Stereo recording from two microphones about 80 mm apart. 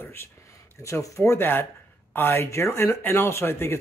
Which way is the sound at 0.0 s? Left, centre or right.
Left.